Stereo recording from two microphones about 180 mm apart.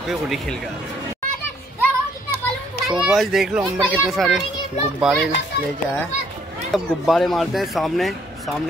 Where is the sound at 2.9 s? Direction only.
Centre (ahead or behind).